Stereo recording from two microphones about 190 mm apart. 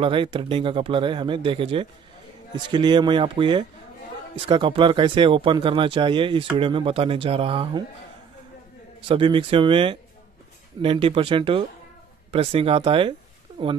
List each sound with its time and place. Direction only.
0.0 s speech: 25° right (ahead or behind)
9.0 s speech: 30° right (ahead or behind)